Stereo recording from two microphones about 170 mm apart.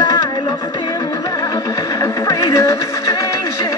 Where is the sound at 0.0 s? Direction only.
25° left (ahead or behind).